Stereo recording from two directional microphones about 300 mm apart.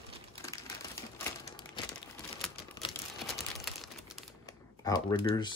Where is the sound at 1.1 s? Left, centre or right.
Centre.